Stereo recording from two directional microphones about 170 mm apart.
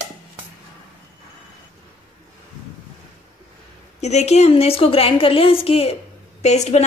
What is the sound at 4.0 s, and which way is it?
A woman's voice, 40° left (ahead or behind).